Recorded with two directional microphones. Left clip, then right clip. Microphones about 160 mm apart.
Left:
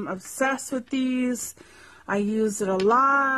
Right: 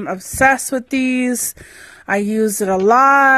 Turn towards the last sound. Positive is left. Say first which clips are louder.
# right 9 dB
turn(degrees=-20)  # may be behind; listen again after turning